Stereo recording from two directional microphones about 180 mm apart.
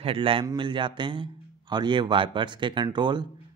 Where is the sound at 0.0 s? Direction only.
30° right (ahead or behind).